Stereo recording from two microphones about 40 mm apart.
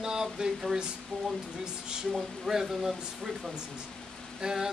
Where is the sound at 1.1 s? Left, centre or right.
Centre.